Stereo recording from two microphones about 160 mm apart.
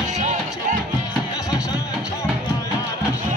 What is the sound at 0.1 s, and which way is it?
Music, 50° right (ahead or behind).